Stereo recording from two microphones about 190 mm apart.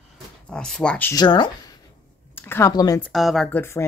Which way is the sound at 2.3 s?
10° left (ahead or behind).